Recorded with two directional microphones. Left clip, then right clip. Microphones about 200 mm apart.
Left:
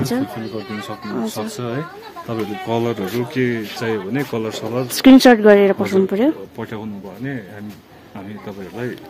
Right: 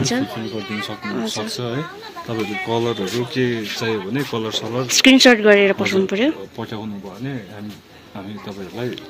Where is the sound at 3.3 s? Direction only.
15° left (ahead or behind).